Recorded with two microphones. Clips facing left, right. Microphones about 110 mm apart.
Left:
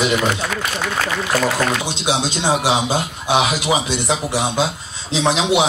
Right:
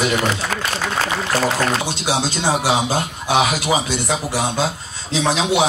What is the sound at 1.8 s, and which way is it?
A man's voice, 20° left (ahead or behind).